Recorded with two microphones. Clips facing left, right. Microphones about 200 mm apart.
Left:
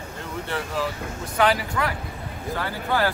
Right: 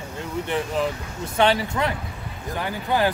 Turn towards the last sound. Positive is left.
turn(degrees=-20)  # may be behind; listen again after turning